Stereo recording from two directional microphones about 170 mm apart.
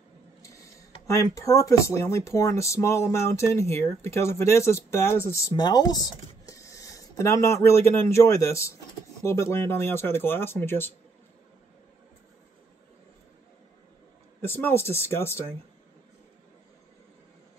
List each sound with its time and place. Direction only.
0.4 s mechanisms: 20° left (ahead or behind)
1.0 s speech: 20° left (ahead or behind)
14.4 s speech: 15° left (ahead or behind)